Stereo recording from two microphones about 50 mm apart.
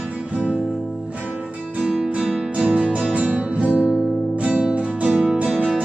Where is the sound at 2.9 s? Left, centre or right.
Right.